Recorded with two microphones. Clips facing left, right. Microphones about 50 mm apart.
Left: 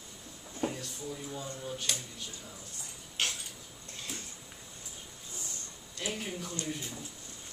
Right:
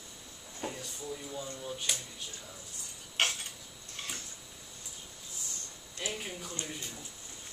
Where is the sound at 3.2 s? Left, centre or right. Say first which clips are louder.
Right 3 dB; right.